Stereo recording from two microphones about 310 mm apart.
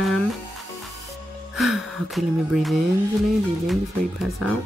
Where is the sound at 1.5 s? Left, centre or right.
Centre.